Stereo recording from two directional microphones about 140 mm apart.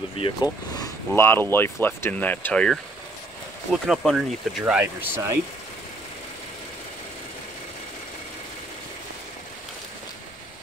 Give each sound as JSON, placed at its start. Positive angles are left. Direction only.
{"t": 0.2, "sound": "speech", "side_deg": 30}